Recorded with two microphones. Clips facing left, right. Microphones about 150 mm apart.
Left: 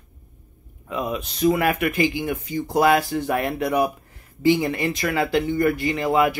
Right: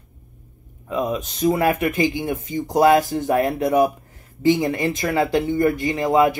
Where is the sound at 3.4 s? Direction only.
25° right (ahead or behind).